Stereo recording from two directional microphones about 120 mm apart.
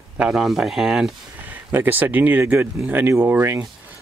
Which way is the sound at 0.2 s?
Centre (ahead or behind).